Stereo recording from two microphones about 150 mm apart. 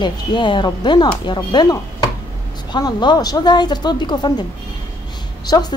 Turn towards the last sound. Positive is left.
turn(degrees=25)  # may be behind; listen again after turning